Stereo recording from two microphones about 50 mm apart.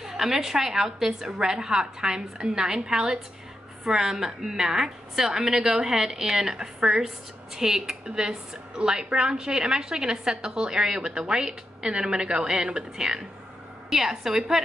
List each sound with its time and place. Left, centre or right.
0.3 s a woman's voice: centre